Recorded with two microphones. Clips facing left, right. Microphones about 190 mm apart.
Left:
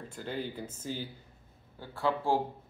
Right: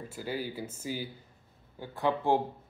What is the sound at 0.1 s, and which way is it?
Speech, 5° right (ahead or behind).